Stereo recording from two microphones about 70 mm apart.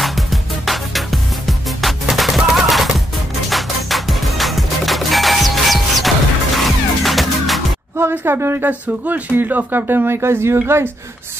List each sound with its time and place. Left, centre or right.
0.0 s music: centre
8.0 s speech: right